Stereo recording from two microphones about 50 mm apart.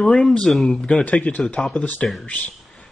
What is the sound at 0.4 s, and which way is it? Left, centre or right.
Speech, centre.